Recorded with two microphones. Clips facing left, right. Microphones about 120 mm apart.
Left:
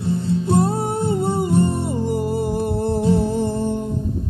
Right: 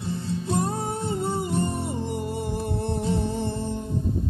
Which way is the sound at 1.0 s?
55° left (ahead or behind).